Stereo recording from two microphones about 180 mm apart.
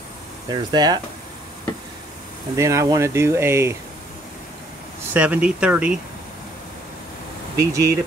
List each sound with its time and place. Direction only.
0.5 s speech: 25° right (ahead or behind)
2.5 s speech: 15° right (ahead or behind)
5.1 s speech: 5° right (ahead or behind)
7.7 s speech: 20° right (ahead or behind)